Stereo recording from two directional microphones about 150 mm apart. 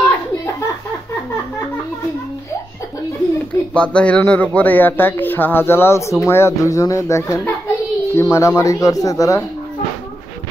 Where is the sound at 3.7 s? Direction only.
5° left (ahead or behind).